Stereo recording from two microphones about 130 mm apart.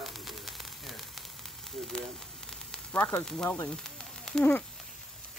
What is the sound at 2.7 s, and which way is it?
Sizzle, 10° left (ahead or behind).